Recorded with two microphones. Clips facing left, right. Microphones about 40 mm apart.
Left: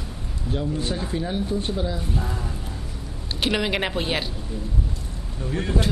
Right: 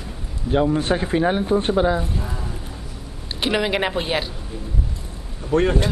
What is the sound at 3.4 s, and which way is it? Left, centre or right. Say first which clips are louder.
Speech: right 3 dB; centre.